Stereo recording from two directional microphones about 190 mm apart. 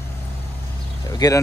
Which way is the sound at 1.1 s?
20° left (ahead or behind).